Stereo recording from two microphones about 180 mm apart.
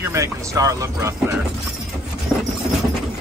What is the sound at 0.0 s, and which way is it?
Speech, 15° right (ahead or behind).